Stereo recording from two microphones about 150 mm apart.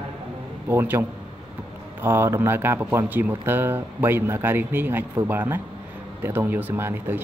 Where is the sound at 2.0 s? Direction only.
15° right (ahead or behind).